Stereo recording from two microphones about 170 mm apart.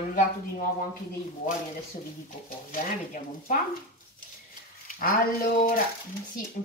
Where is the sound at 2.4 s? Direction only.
55° left (ahead or behind).